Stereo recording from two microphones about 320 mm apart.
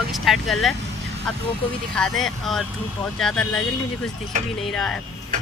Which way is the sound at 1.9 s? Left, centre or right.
Centre.